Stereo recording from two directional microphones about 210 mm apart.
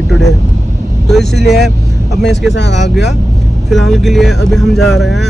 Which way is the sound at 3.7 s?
Centre (ahead or behind).